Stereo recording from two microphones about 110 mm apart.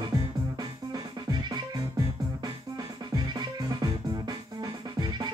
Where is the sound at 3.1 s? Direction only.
40° right (ahead or behind).